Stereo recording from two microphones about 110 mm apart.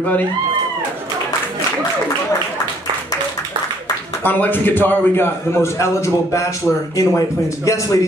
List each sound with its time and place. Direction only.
4.2 s a man's voice: 15° left (ahead or behind)